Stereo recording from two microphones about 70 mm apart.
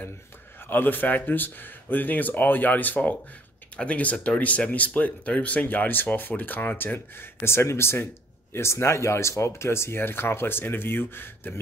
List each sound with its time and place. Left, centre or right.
0.7 s speech: left